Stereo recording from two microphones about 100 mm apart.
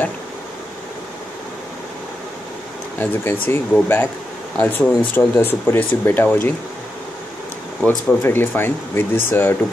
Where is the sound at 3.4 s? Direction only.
20° left (ahead or behind).